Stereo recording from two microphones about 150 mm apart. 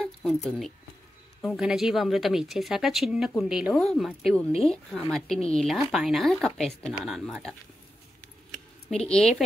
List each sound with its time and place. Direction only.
0.2 s speech: centre (ahead or behind)
8.9 s speech: 5° left (ahead or behind)